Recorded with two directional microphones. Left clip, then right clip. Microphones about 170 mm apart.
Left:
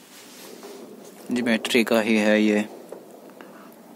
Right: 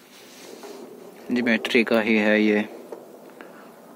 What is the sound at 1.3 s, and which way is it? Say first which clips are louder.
Speech: right 1 dB; 20° left (ahead or behind).